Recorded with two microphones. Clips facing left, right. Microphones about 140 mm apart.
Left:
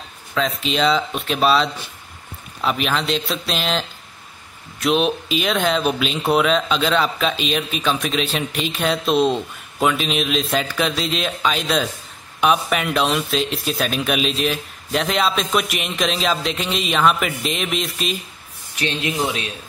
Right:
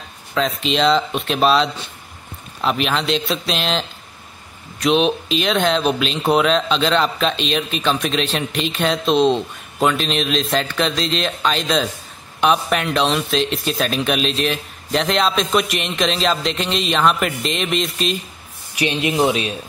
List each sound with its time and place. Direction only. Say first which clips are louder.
0.3 s speech: right 2 dB; centre (ahead or behind)
18.8 s speech: right 5 dB; 15° right (ahead or behind)